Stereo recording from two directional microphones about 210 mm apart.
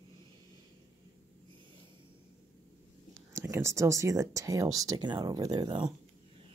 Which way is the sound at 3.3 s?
15° right (ahead or behind).